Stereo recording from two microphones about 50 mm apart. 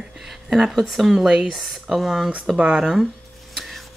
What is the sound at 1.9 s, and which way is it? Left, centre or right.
Speech, centre.